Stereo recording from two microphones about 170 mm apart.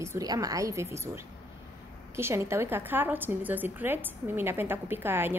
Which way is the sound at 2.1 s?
15° right (ahead or behind).